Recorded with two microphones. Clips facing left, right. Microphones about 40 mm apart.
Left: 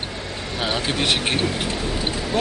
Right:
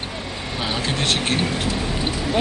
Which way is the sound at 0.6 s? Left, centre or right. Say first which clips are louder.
Left 1 dB; centre.